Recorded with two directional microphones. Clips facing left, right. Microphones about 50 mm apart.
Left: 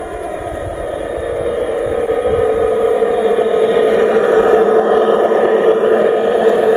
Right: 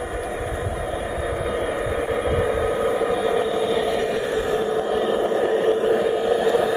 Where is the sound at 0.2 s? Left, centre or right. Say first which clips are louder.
Left 5 dB; centre.